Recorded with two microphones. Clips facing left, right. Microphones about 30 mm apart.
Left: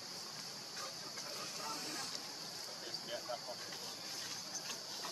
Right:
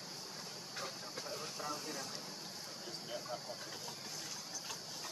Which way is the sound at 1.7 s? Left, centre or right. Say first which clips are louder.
Right 1 dB; left.